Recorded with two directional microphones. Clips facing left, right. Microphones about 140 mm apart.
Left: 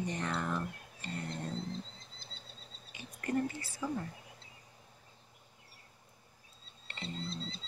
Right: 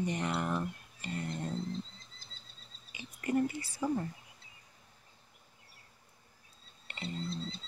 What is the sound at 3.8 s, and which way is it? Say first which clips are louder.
Speech: right 4 dB; 20° right (ahead or behind).